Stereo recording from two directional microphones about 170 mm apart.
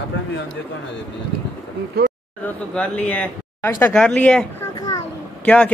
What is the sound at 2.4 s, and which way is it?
Speech, 10° left (ahead or behind).